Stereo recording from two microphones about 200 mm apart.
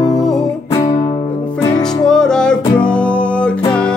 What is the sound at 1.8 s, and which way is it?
Music, 5° left (ahead or behind).